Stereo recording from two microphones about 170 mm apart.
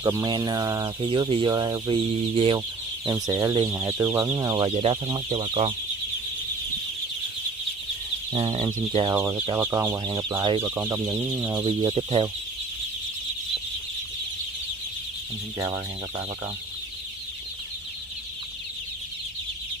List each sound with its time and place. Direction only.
0.0 s speech: 25° right (ahead or behind)
3.1 s speech: 20° right (ahead or behind)
4.6 s speech: 35° right (ahead or behind)
8.3 s speech: 35° right (ahead or behind)
10.6 s speech: 15° right (ahead or behind)
11.6 s speech: 25° right (ahead or behind)